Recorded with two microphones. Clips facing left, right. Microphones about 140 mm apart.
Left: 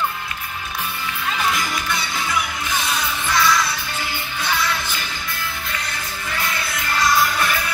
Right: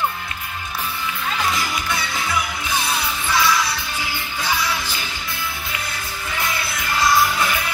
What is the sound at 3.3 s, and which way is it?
Music, 10° right (ahead or behind).